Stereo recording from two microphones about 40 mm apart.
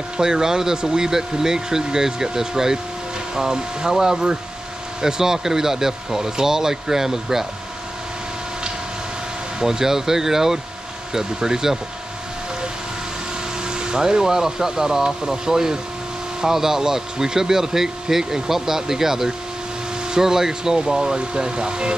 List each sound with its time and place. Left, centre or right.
0.2 s speech: centre
9.6 s speech: centre
13.7 s speech: right